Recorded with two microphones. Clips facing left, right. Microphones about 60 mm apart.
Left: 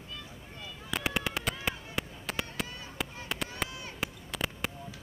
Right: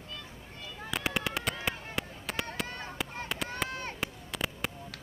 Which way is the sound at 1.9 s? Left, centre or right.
Centre.